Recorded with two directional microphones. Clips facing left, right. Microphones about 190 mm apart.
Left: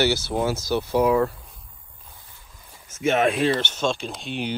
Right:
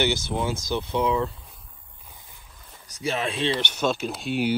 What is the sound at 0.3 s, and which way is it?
Speech, 25° left (ahead or behind).